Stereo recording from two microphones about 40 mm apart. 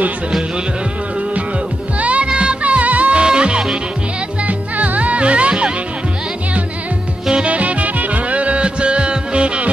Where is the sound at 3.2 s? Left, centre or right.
Right.